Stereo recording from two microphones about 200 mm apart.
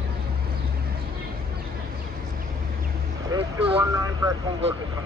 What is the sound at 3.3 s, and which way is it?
Vehicle, 30° right (ahead or behind).